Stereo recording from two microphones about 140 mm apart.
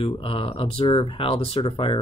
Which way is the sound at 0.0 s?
40° left (ahead or behind).